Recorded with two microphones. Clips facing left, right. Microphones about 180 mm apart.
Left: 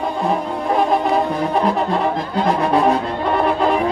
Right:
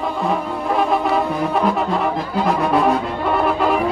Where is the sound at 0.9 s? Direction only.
30° left (ahead or behind).